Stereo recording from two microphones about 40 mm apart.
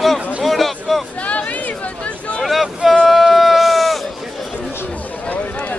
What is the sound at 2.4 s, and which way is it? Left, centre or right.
Boat, centre.